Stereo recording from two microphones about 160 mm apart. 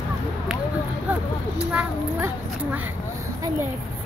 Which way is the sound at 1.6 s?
10° right (ahead or behind).